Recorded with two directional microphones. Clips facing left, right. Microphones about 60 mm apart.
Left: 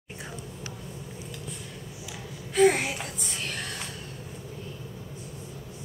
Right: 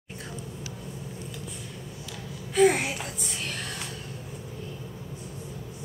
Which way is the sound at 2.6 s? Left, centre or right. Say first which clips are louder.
Even; centre.